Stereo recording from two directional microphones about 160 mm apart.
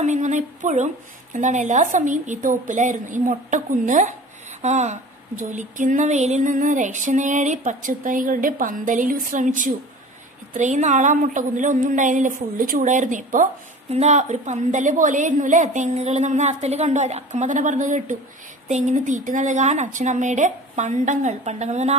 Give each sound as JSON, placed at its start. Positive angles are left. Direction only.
{"t": 0.0, "sound": "a woman's voice", "side_deg": -50}
{"t": 5.4, "sound": "a sound", "side_deg": -50}
{"t": 10.5, "sound": "a woman's voice", "side_deg": -50}
{"t": 13.8, "sound": "a woman's voice", "side_deg": -45}